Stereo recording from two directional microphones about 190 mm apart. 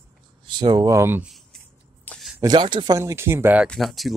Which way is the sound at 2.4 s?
25° right (ahead or behind).